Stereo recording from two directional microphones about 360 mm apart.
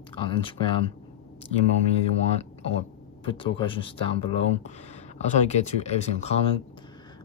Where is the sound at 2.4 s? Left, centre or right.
Centre.